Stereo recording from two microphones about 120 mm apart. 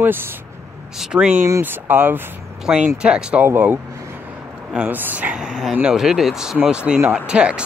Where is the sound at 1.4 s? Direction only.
20° right (ahead or behind).